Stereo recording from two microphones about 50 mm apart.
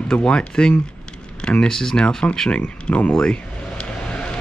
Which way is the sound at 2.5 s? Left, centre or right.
Left.